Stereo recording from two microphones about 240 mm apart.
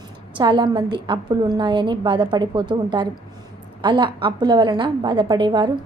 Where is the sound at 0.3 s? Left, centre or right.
Centre.